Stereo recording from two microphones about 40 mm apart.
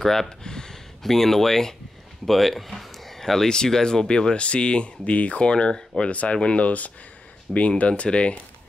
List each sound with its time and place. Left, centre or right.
0.0 s speech: centre
6.0 s speech: left